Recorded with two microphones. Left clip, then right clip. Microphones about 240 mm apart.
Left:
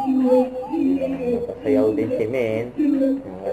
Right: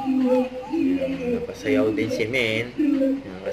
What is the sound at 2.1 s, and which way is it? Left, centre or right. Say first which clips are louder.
Speech: left 1 dB; centre.